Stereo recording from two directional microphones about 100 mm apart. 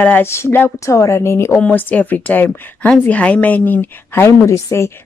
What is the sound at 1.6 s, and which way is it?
Speech, 15° left (ahead or behind).